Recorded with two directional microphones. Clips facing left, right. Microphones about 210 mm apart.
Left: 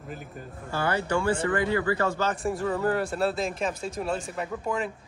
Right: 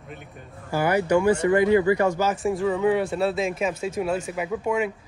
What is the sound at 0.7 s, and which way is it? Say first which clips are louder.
Speech: right 6 dB; 10° right (ahead or behind).